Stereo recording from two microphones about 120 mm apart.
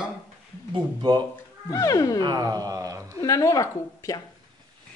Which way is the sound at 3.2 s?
30° left (ahead or behind).